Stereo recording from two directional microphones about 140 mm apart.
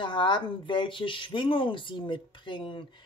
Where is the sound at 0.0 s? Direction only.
35° left (ahead or behind).